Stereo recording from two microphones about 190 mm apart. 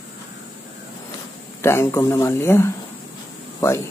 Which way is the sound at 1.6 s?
15° left (ahead or behind).